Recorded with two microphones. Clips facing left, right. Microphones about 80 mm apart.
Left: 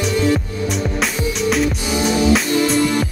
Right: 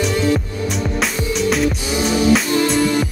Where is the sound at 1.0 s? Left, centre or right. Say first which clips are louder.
Right 2 dB; centre.